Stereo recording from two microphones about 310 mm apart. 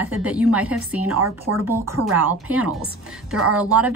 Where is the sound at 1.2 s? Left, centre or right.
Right.